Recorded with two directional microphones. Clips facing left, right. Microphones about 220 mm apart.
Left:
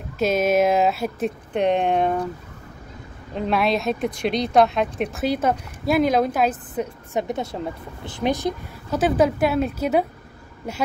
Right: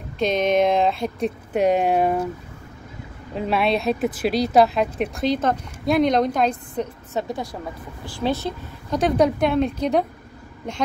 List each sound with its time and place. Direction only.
0.2 s speech: 5° left (ahead or behind)
1.5 s speech: 5° right (ahead or behind)
3.3 s speech: centre (ahead or behind)
7.2 s a woman's voice: 20° left (ahead or behind)
8.9 s speech: 5° left (ahead or behind)